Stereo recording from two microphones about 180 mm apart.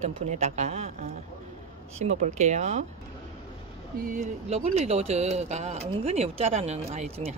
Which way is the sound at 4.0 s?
45° right (ahead or behind).